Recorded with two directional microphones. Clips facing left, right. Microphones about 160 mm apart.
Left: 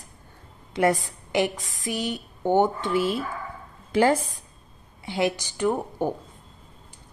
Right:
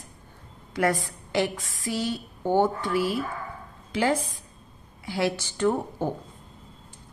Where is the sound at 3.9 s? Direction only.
45° left (ahead or behind).